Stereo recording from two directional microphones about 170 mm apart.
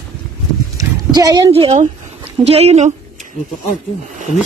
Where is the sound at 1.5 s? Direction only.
40° right (ahead or behind).